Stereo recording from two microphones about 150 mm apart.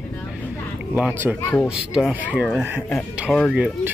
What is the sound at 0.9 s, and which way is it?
Speech, 10° right (ahead or behind).